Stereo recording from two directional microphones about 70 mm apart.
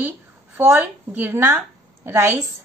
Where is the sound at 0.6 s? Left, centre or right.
Right.